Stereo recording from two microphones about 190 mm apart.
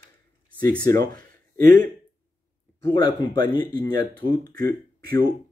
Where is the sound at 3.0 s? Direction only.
25° left (ahead or behind).